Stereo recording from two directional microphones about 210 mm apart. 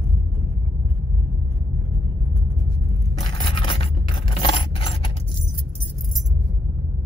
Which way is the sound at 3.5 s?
25° left (ahead or behind).